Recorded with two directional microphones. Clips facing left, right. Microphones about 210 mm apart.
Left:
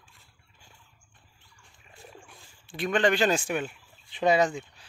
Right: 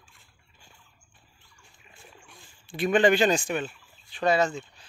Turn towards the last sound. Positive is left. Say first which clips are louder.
# left 1 dB
turn(degrees=15)  # may be behind; listen again after turning